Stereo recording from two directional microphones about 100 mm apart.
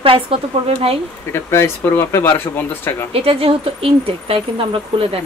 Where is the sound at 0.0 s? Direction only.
65° right (ahead or behind).